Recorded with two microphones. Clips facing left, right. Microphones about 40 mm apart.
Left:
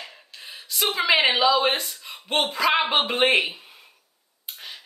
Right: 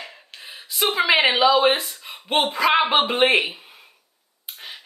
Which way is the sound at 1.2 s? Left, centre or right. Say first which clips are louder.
Right 4 dB; right.